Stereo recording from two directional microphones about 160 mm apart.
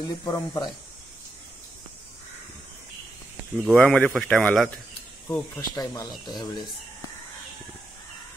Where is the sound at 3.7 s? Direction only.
5° left (ahead or behind).